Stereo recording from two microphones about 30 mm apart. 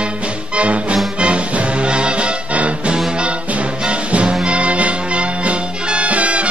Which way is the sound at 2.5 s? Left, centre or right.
Right.